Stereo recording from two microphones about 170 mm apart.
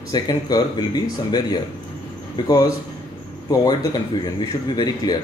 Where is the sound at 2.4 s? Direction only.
20° left (ahead or behind).